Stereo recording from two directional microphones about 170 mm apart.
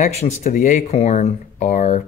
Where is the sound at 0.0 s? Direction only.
40° left (ahead or behind).